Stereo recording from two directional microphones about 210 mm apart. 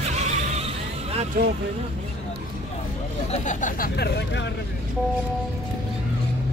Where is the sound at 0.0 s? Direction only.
30° right (ahead or behind).